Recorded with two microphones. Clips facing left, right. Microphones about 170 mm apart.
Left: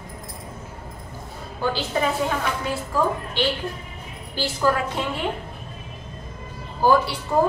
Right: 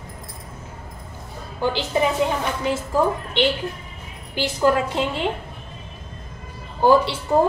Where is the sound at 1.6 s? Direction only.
20° right (ahead or behind).